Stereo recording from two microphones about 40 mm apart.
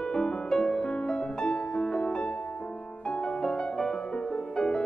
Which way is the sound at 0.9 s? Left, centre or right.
Left.